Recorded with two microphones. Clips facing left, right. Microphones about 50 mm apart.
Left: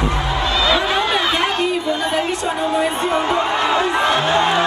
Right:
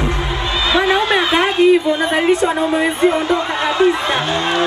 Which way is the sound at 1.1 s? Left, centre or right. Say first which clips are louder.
Right 3 dB; centre.